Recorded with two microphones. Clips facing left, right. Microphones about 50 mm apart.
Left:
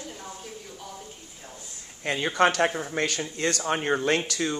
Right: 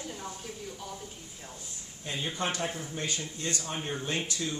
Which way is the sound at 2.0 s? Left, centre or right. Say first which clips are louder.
Left 11 dB; left.